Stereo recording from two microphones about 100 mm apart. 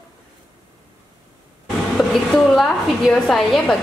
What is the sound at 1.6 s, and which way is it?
A woman's voice, 5° left (ahead or behind).